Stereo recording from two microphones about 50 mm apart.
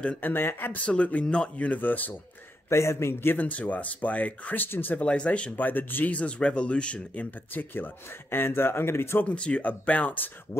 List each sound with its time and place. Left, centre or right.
0.2 s speech: left
0.7 s speech: left
1.8 s speech: left
2.7 s a man's voice: left
3.3 s speech: left
4.6 s speech: left
5.0 s speech: left
5.6 s speech: left
6.1 s speech: left
9.2 s speech: left